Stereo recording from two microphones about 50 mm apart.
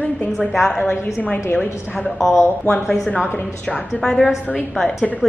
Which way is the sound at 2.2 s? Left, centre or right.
Centre.